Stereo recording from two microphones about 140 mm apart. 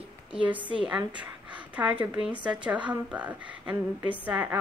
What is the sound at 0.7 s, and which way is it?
A woman's voice, 5° right (ahead or behind).